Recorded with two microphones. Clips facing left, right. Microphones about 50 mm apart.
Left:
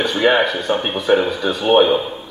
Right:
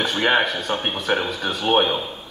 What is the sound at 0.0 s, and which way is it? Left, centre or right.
Speech, left.